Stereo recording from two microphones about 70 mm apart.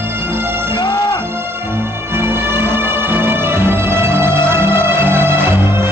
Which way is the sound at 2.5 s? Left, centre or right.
Right.